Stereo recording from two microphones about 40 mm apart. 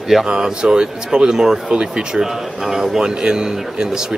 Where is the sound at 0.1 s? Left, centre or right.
Centre.